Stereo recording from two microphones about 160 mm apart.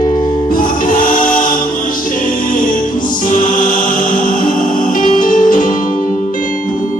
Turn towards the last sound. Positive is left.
turn(degrees=55)  # may be behind; listen again after turning